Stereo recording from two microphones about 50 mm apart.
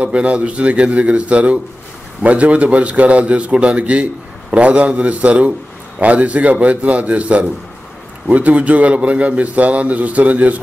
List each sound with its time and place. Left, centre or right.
0.0 s a man's voice: right